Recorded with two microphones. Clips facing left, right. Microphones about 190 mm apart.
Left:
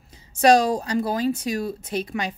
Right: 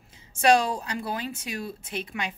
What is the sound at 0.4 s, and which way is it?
Speech, 40° left (ahead or behind).